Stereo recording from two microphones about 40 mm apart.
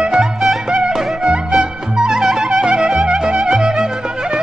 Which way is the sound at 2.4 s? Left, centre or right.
Centre.